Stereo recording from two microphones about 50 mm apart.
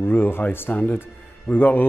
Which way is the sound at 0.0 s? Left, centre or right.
Left.